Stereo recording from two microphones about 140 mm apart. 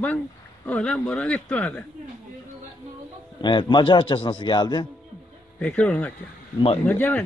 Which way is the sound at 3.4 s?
35° left (ahead or behind).